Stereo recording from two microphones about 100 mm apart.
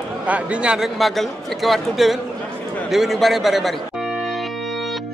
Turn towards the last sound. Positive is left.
turn(degrees=0)  # may be behind; listen again after turning